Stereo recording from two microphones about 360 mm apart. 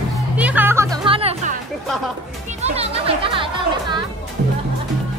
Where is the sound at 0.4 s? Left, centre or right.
Centre.